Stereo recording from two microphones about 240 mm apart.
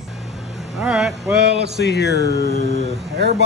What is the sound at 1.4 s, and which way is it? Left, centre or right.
Speech, right.